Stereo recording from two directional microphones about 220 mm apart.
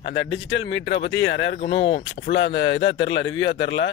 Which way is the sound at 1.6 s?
25° left (ahead or behind).